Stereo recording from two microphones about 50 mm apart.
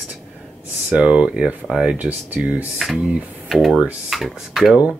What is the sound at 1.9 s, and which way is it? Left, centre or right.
Speech, right.